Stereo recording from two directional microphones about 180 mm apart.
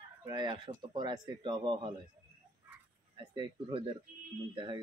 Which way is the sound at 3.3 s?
30° right (ahead or behind).